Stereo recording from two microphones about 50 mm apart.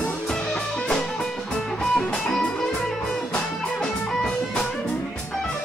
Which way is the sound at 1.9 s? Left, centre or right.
Centre.